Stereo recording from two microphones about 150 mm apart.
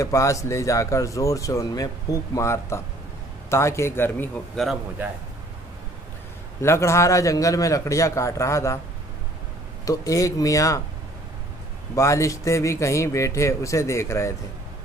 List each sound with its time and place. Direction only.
0.0 s a man's voice: 20° left (ahead or behind)
6.6 s speech: 20° left (ahead or behind)
9.8 s speech: 20° left (ahead or behind)
11.9 s speech: 20° left (ahead or behind)